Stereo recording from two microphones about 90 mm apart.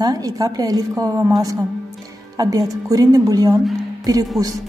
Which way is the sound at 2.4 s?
45° right (ahead or behind).